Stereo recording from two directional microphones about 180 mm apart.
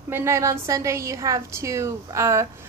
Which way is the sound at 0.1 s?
15° right (ahead or behind).